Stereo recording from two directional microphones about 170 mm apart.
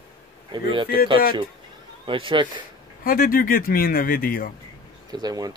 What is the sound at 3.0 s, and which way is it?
Speech, 55° left (ahead or behind).